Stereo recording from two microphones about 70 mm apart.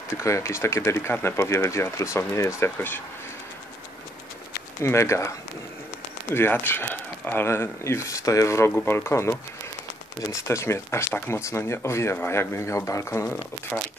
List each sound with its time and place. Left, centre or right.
0.2 s speech: left
4.8 s speech: left
6.5 s speech: left
7.4 s speech: left
10.5 s speech: left
13.7 s speech: centre